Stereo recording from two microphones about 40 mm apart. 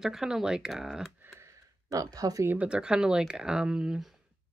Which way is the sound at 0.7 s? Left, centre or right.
Centre.